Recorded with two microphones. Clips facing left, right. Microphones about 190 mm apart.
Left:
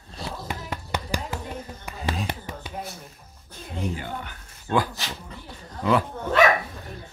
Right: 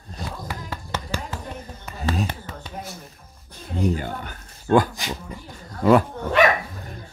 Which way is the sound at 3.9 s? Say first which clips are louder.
Right 3 dB; 45° right (ahead or behind).